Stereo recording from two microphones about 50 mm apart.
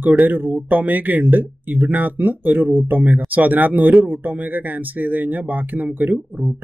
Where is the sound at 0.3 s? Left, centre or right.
Right.